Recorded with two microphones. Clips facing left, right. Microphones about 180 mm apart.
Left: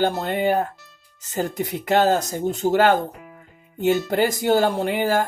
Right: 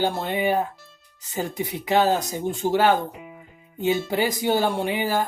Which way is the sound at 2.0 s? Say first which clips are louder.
Left 2 dB; 45° left (ahead or behind).